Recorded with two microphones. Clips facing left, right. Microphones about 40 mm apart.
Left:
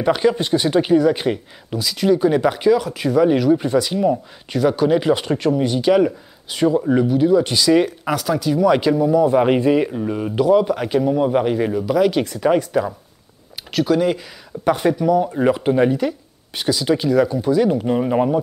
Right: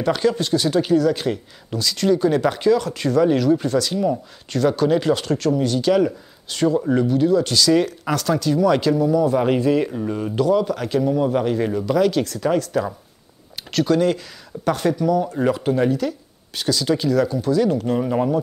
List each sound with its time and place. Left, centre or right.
0.0 s speech: centre
1.8 s speech: centre